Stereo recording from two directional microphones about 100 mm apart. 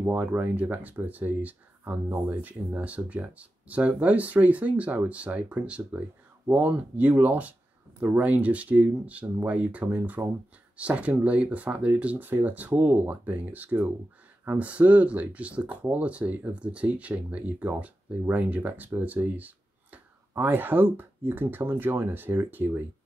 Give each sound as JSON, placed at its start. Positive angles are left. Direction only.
{"t": 0.0, "sound": "speech", "side_deg": -20}